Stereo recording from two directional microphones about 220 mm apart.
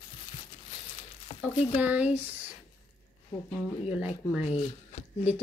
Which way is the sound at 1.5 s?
30° left (ahead or behind).